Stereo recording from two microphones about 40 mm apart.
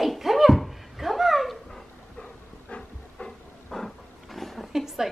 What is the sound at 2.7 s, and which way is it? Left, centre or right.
Train, left.